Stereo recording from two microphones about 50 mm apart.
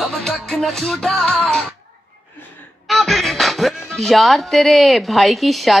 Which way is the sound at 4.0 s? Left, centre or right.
Centre.